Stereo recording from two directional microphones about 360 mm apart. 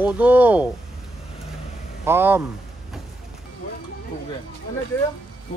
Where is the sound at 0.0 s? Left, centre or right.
Centre.